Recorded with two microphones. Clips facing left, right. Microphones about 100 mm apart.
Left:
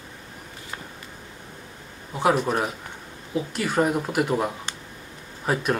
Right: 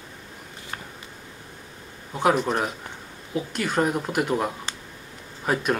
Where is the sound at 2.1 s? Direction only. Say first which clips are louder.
Even; centre (ahead or behind).